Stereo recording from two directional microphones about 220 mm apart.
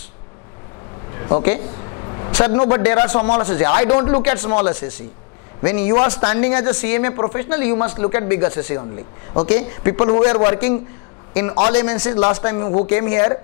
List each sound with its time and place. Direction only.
1.1 s a sound: 20° left (ahead or behind)
2.4 s speech: 25° left (ahead or behind)
9.9 s speech: 25° left (ahead or behind)
12.8 s speech: 15° left (ahead or behind)